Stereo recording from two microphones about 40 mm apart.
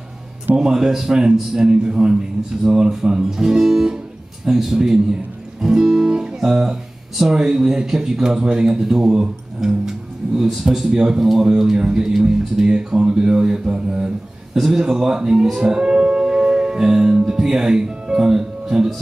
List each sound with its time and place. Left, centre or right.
0.6 s speech: centre
5.6 s music: centre
7.5 s speech: centre
8.7 s speech: centre
15.6 s music: centre
17.3 s speech: centre